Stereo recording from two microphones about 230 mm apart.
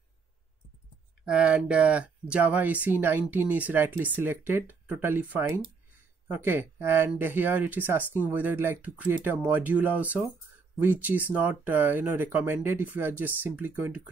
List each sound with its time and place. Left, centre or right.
1.2 s speech: centre